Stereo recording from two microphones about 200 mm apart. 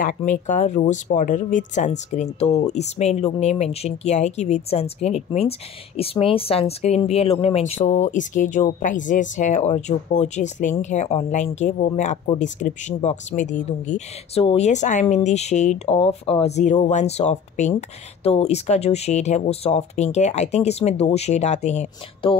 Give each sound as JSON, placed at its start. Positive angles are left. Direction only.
{"t": 0.0, "sound": "speech", "side_deg": 40}